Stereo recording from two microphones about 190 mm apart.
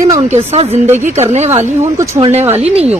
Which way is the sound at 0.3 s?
35° right (ahead or behind).